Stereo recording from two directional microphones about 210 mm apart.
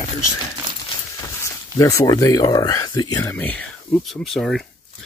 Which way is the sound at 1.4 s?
15° left (ahead or behind).